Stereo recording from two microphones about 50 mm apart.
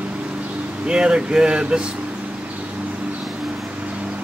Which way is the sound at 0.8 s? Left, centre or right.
Centre.